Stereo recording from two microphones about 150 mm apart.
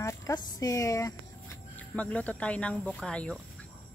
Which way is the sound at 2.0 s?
10° left (ahead or behind).